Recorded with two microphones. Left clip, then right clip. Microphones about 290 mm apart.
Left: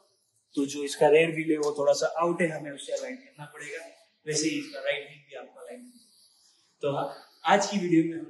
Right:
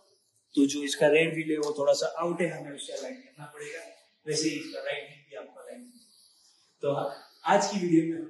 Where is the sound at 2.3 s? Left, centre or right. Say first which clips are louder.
Left 2 dB; centre.